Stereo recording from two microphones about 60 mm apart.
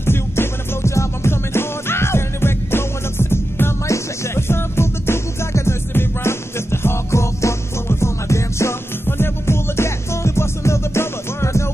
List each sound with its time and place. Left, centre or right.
0.0 s music: left
3.8 s music: left